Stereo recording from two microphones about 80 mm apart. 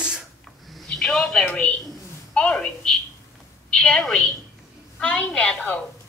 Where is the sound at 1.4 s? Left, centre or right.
Centre.